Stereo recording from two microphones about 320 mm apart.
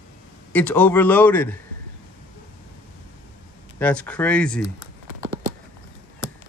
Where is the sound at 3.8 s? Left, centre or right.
Centre.